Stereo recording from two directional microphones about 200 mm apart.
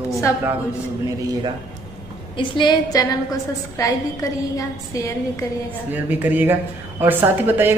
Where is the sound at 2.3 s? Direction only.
25° left (ahead or behind).